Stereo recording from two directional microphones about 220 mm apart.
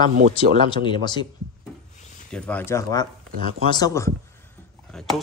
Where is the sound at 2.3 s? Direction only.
5° left (ahead or behind).